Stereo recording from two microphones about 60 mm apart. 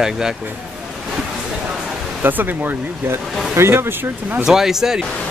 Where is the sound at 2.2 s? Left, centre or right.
Right.